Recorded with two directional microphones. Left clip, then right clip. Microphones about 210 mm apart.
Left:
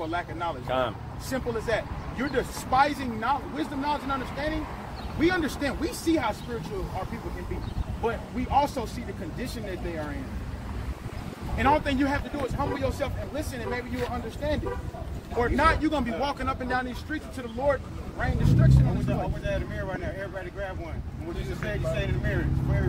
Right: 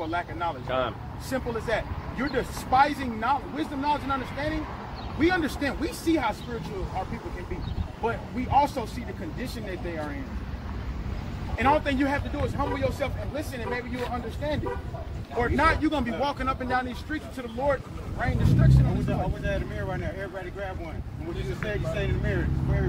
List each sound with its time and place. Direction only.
0.0 s speech: 15° right (ahead or behind)
0.7 s speech: 55° left (ahead or behind)
1.3 s speech: 15° right (ahead or behind)
8.0 s speech: 15° right (ahead or behind)
11.5 s speech: 15° right (ahead or behind)
19.0 s speech: 20° left (ahead or behind)
21.6 s speech: 20° left (ahead or behind)